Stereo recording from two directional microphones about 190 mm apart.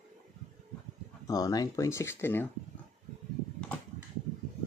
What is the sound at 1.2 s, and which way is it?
Speech, 20° left (ahead or behind).